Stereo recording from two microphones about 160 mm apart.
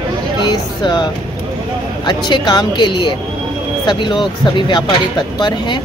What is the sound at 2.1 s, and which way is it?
Speech, 25° left (ahead or behind).